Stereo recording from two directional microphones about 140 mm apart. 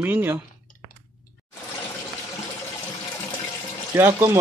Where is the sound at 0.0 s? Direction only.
15° right (ahead or behind).